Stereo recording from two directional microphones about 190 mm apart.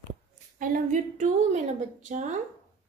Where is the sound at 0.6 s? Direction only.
45° right (ahead or behind).